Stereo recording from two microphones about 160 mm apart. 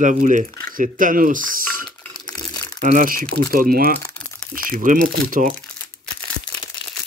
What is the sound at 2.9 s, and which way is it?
Speech, 60° right (ahead or behind).